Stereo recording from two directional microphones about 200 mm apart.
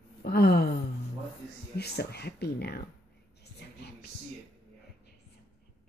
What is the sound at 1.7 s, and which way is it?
Speech, 55° left (ahead or behind).